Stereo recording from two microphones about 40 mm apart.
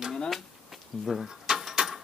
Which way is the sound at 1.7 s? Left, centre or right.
Centre.